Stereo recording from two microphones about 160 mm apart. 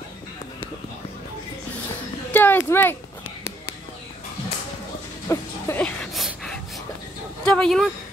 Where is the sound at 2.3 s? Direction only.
10° left (ahead or behind).